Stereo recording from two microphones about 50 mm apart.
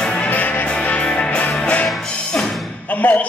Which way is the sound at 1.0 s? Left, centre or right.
Centre.